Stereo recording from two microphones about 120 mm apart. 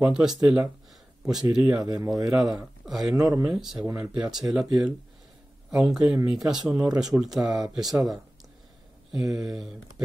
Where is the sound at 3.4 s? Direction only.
5° right (ahead or behind).